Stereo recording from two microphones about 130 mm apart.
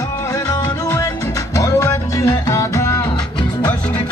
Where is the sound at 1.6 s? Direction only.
25° left (ahead or behind).